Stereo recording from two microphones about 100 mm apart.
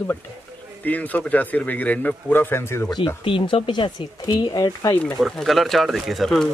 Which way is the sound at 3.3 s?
60° left (ahead or behind).